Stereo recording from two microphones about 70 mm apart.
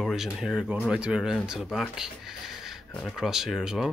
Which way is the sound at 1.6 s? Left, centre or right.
Centre.